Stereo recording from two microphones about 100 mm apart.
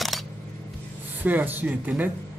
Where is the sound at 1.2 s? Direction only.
20° right (ahead or behind).